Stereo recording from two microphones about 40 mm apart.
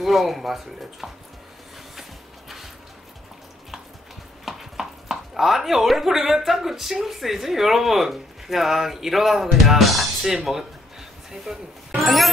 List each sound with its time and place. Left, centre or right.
0.0 s speech: centre
4.5 s speech: centre
11.5 s speech: centre
12.0 s music: centre